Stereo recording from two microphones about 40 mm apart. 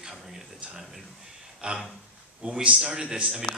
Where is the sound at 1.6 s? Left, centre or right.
Right.